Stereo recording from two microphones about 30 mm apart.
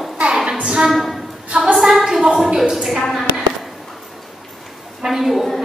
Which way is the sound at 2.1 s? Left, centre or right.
Centre.